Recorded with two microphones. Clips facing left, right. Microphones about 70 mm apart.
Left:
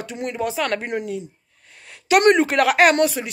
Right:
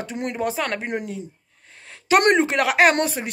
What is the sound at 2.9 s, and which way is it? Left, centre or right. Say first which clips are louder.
Speech: left 4 dB; right.